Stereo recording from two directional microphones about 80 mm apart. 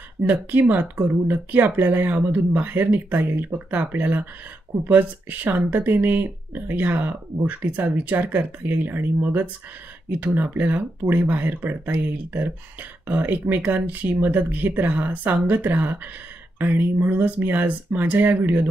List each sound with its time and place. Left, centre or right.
0.2 s speech: right